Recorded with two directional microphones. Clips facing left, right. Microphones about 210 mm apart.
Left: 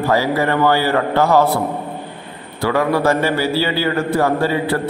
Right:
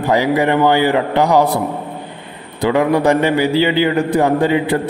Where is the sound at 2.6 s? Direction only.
20° right (ahead or behind).